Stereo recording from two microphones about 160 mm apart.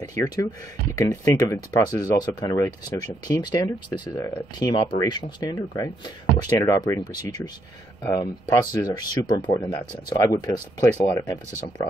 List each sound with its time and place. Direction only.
0.1 s speech: 20° left (ahead or behind)